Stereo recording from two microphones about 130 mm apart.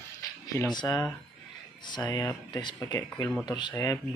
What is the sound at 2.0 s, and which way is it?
Speech, 25° left (ahead or behind).